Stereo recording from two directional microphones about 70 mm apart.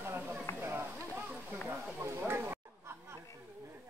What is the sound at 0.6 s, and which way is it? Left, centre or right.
Run, right.